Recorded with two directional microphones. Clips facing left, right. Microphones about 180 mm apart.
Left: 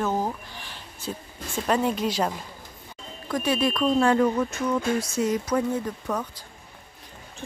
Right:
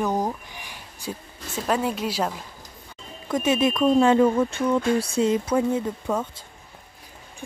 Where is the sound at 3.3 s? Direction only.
20° right (ahead or behind).